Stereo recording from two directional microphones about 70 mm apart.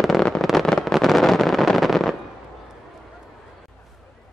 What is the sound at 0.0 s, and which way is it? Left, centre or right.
Fireworks, centre.